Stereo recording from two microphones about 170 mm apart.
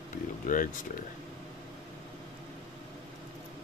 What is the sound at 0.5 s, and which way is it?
Speech, 50° left (ahead or behind).